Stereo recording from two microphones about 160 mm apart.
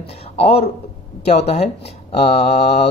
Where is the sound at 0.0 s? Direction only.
40° left (ahead or behind).